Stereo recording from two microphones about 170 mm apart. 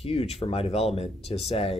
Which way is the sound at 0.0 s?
35° left (ahead or behind).